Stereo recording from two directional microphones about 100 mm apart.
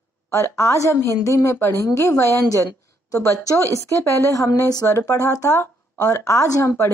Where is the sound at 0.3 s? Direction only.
30° left (ahead or behind).